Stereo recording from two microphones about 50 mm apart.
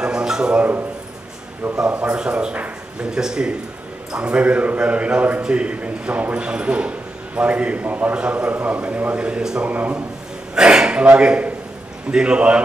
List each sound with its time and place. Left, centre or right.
0.0 s a sound: centre
0.6 s a man's voice: right
1.9 s a man's voice: right
3.1 s a man's voice: centre; by 8.2 s right
8.2 s a man's voice: centre
8.5 s a man's voice: right; by 9.7 s centre
9.7 s a man's voice: right
10.5 s a man's voice: centre